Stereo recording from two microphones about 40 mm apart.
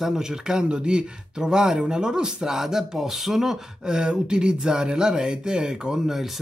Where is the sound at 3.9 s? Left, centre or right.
Right.